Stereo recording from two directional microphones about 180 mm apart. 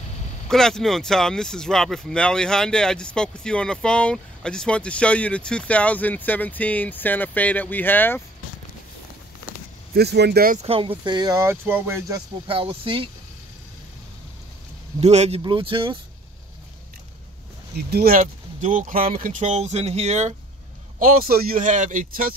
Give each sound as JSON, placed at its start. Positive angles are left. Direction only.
{"t": 0.5, "sound": "speech", "side_deg": 5}
{"t": 9.9, "sound": "speech", "side_deg": -65}
{"t": 10.7, "sound": "speech", "side_deg": -30}
{"t": 12.4, "sound": "speech", "side_deg": -30}
{"t": 15.0, "sound": "speech", "side_deg": -35}
{"t": 17.7, "sound": "speech", "side_deg": -60}
{"t": 21.0, "sound": "speech", "side_deg": -55}